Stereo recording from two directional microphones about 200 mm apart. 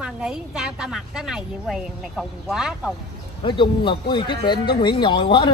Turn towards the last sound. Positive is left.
turn(degrees=25)  # may be behind; listen again after turning